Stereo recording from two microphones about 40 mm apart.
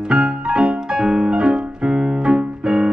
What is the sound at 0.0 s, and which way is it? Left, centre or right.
Piano, right.